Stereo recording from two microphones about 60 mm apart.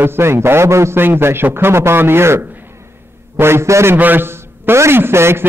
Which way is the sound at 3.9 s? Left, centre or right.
Right.